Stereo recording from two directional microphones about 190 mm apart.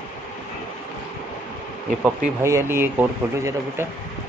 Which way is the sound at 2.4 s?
15° right (ahead or behind).